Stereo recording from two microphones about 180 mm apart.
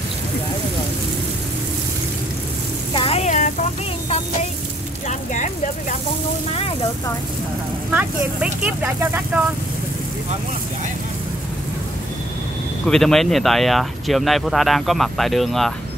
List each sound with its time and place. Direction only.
2.9 s a sound: 30° left (ahead or behind)
5.0 s speech: 45° left (ahead or behind)
7.9 s speech: 5° right (ahead or behind)
12.8 s speech: centre (ahead or behind)